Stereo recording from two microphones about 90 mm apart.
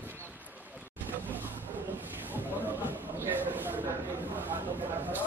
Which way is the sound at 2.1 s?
20° right (ahead or behind).